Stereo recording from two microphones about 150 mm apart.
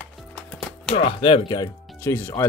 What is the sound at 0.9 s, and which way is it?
Speech, 40° left (ahead or behind).